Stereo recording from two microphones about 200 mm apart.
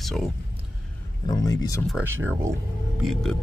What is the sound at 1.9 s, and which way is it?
Speech, 10° right (ahead or behind).